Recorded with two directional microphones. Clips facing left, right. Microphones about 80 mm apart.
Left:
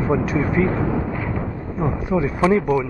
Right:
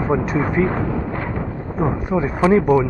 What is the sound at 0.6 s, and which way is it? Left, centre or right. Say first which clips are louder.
Speech: right 1 dB; right.